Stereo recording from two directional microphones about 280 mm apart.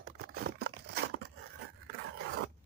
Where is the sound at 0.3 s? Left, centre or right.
Right.